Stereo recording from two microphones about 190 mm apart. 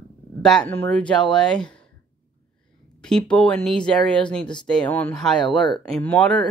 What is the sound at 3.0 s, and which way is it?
Speech, 5° left (ahead or behind).